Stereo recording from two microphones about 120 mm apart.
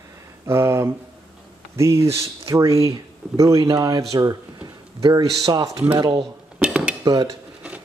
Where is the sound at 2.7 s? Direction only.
55° right (ahead or behind).